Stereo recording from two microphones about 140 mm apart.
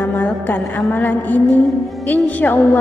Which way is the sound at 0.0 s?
10° left (ahead or behind).